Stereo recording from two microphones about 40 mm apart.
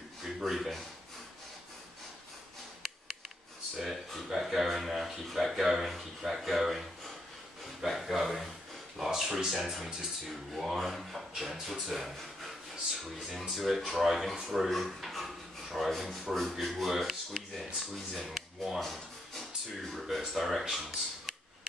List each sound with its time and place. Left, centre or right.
0.2 s speech: centre
3.7 s a sound: centre
5.9 s speech: centre
7.8 s a sound: centre
8.9 s speech: centre
18.8 s rub: centre
19.8 s speech: centre